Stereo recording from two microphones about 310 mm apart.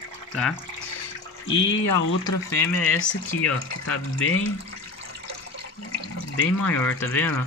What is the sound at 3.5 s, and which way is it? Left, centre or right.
Speech, left.